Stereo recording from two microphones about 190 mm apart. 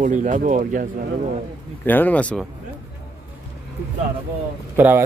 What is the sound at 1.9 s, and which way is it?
Speech, 10° left (ahead or behind).